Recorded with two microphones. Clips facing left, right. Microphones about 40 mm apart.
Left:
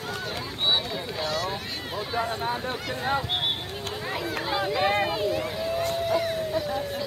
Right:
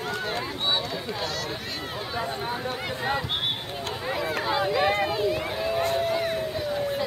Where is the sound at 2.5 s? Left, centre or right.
Centre.